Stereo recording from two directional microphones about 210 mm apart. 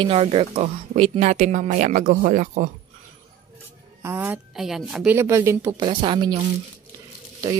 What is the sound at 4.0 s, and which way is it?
A woman's voice, 10° right (ahead or behind).